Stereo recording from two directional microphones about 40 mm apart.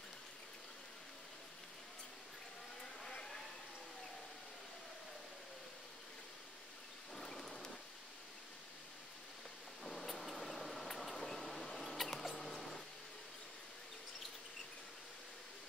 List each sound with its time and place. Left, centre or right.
2.8 s a sound: centre
7.2 s rain: centre
9.8 s vehicle: centre
11.2 s mouse: centre